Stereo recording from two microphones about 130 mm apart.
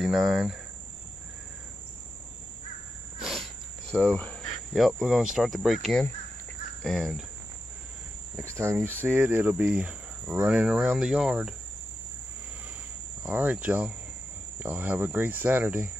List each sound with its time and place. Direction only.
0.0 s speech: centre (ahead or behind)
3.2 s cricket: centre (ahead or behind)
3.9 s speech: 10° left (ahead or behind)
4.7 s speech: centre (ahead or behind)
6.8 s cricket: centre (ahead or behind)
8.4 s speech: 20° right (ahead or behind); by 11.5 s 5° right (ahead or behind)
13.2 s speech: 15° right (ahead or behind)